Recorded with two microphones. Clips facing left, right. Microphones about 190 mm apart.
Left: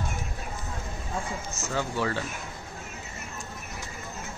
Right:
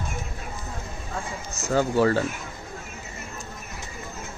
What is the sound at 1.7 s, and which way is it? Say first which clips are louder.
Speech: right 9 dB; 45° right (ahead or behind).